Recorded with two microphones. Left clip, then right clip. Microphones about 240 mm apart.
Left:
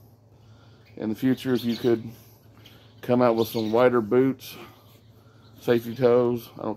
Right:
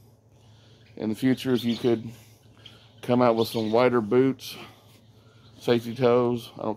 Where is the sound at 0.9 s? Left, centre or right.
Centre.